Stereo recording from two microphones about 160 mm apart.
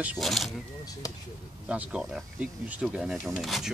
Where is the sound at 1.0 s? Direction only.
25° left (ahead or behind).